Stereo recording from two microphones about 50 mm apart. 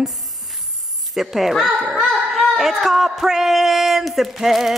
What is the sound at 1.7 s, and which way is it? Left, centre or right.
Speech, right.